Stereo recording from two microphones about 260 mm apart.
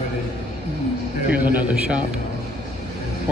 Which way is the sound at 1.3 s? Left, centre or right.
Centre.